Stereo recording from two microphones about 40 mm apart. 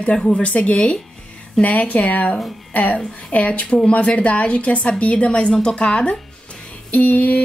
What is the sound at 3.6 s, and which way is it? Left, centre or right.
Speech, centre.